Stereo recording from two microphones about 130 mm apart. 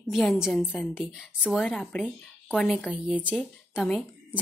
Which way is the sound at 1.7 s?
10° left (ahead or behind).